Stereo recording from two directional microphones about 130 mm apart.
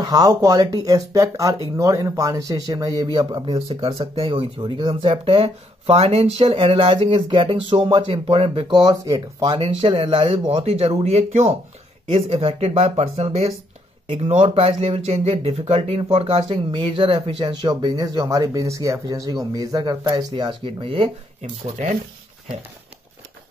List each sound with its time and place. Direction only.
0.0 s speech: 30° right (ahead or behind)
3.5 s speech: 50° right (ahead or behind); by 9.6 s 30° right (ahead or behind)
9.6 s speech: 40° right (ahead or behind); by 11.5 s 60° right (ahead or behind)
12.1 s speech: 50° right (ahead or behind)
14.0 s speech: 45° right (ahead or behind)
21.4 s speech: 70° right (ahead or behind)